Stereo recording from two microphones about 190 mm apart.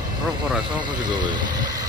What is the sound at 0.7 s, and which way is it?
Speech, 25° right (ahead or behind).